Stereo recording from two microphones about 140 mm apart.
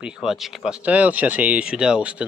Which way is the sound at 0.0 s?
5° right (ahead or behind).